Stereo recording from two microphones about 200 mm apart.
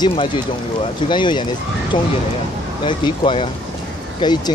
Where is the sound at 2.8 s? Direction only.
25° left (ahead or behind).